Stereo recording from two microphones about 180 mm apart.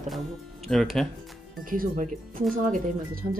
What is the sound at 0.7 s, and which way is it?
Speech, centre (ahead or behind).